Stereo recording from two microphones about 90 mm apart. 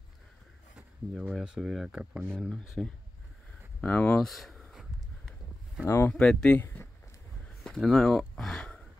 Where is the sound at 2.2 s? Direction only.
5° left (ahead or behind).